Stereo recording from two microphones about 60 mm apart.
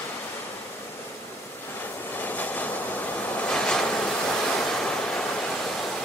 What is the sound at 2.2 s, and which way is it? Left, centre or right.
Train, left.